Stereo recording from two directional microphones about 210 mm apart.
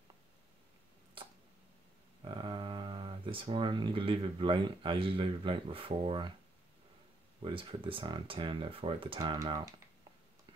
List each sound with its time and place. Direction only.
2.2 s speech: 25° right (ahead or behind)
7.4 s speech: 25° right (ahead or behind)